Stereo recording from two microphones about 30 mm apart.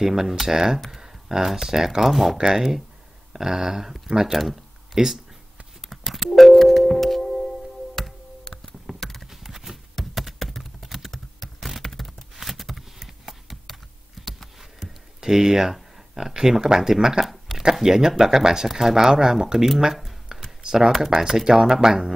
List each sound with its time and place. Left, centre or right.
0.0 s speech: centre
2.0 s speech: centre
2.3 s speech: centre
6.3 s music: centre
9.0 s clip-clop: centre
9.3 s horse: centre
9.9 s computer keyboard: centre
11.8 s a sound: centre
13.2 s a sound: centre
13.7 s computer keyboard: centre
15.2 s speech: centre
19.0 s speech: right
20.6 s speech: centre
20.9 s speech: centre